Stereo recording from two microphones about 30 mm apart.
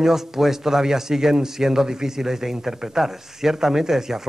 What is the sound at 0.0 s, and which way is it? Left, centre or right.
Speech, centre.